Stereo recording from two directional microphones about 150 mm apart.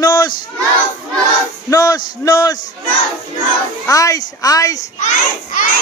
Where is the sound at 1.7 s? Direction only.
25° left (ahead or behind).